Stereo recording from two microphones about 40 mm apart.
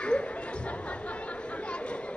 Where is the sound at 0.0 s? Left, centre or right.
Left.